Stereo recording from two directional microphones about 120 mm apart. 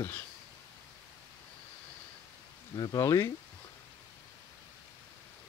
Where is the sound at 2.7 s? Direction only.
35° left (ahead or behind).